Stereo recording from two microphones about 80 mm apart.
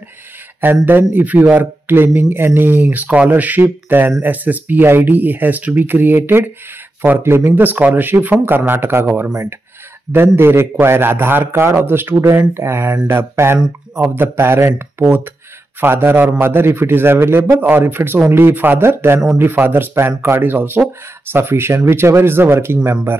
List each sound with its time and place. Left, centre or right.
0.8 s a man's voice: right